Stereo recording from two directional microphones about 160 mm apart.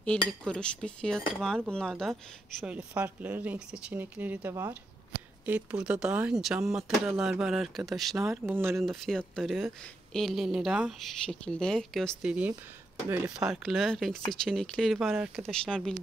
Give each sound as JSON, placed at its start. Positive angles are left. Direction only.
{"t": 0.0, "sound": "cutlery", "side_deg": 5}
{"t": 1.7, "sound": "speech", "side_deg": 5}
{"t": 2.6, "sound": "speech", "side_deg": -10}
{"t": 8.2, "sound": "speech", "side_deg": -15}
{"t": 8.8, "sound": "speech", "side_deg": 5}
{"t": 12.3, "sound": "speech", "side_deg": -10}